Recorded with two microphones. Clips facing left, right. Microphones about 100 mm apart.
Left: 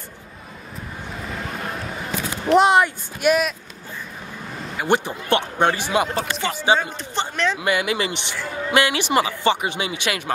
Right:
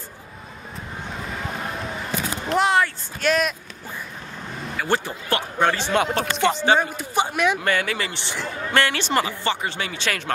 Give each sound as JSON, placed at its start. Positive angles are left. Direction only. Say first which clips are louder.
{"t": 2.5, "sound": "a sound", "louder": "left 5 dB", "side_deg": 20}
{"t": 4.7, "sound": "speech", "louder": "left 3 dB", "side_deg": 20}
{"t": 6.5, "sound": "speech", "louder": "left 3 dB", "side_deg": 15}
{"t": 6.8, "sound": "speech", "louder": "right 3 dB", "side_deg": -10}
{"t": 7.5, "sound": "speech", "louder": "left 2 dB", "side_deg": 10}